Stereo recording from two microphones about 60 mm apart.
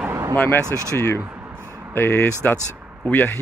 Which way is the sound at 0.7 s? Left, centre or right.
Right.